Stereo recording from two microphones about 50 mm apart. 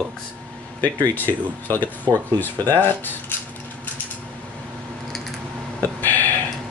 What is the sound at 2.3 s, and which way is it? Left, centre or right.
Speech, left.